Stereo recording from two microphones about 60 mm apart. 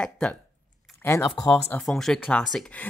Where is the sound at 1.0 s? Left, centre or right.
Left.